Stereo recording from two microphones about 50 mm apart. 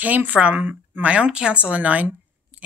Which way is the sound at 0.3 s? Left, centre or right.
Right.